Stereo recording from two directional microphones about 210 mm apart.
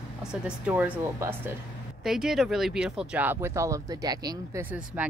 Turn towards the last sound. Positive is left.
turn(degrees=-5)  # may be behind; listen again after turning